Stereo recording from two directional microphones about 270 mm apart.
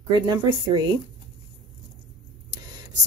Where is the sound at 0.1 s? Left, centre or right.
Centre.